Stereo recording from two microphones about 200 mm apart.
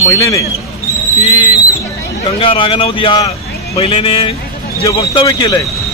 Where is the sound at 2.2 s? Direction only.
25° left (ahead or behind).